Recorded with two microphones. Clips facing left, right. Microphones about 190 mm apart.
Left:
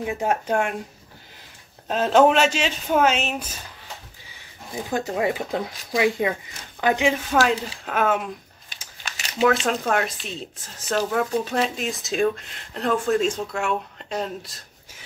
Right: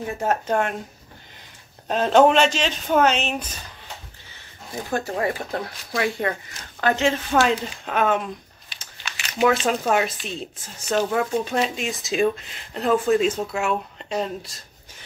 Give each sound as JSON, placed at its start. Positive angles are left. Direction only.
{"t": 0.0, "sound": "speech", "side_deg": 10}
{"t": 1.9, "sound": "speech", "side_deg": 0}
{"t": 5.1, "sound": "speech", "side_deg": 10}
{"t": 8.6, "sound": "crumpling", "side_deg": 45}
{"t": 9.4, "sound": "speech", "side_deg": -5}